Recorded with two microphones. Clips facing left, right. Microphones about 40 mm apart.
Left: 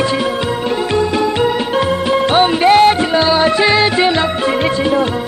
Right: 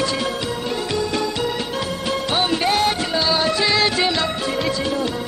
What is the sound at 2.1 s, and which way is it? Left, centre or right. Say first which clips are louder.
Music: left 7 dB; left.